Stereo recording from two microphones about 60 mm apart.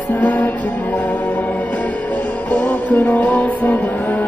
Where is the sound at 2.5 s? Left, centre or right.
Left.